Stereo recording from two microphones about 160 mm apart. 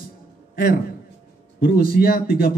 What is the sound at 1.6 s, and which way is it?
Speech, 70° left (ahead or behind).